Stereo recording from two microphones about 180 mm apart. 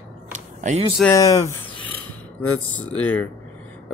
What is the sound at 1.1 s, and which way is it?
Speech, 15° left (ahead or behind).